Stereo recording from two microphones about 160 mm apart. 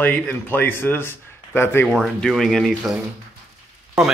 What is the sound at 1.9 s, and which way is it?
Speech, centre (ahead or behind).